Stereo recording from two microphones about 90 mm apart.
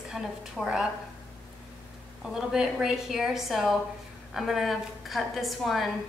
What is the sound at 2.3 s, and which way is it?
A woman's voice, 5° right (ahead or behind).